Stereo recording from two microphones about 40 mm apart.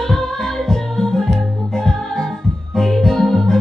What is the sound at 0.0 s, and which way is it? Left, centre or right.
Music, centre.